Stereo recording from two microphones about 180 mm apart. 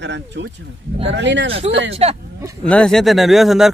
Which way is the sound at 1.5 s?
35° right (ahead or behind).